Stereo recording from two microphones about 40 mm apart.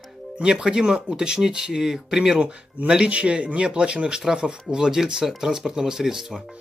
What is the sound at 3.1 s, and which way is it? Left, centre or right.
Speech, right.